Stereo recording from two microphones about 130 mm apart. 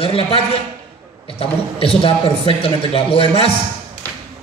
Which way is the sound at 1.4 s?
45° left (ahead or behind).